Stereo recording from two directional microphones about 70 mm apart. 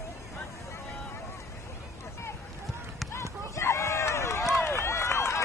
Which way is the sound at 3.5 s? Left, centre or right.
Left.